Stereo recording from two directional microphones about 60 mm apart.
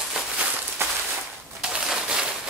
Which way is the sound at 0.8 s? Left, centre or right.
Right.